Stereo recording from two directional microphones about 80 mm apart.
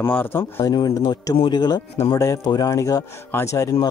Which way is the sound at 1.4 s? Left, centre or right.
Left.